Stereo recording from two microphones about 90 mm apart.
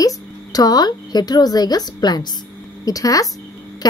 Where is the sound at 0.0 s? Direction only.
45° left (ahead or behind).